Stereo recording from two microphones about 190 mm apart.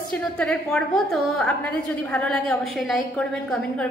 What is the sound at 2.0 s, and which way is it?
A woman's voice, 5° left (ahead or behind).